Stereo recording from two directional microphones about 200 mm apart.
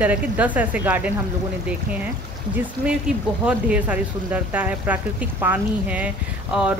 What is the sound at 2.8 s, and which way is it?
Speech, 5° right (ahead or behind).